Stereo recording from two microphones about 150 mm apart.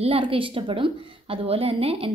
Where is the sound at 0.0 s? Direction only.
40° right (ahead or behind).